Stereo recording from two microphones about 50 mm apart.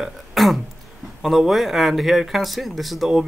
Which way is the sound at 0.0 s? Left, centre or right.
Centre.